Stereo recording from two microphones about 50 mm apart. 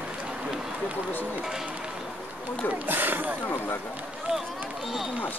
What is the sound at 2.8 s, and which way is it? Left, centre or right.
Speech, right.